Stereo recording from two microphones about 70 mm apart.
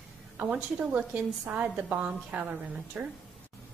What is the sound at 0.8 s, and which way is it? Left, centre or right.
A woman's voice, right.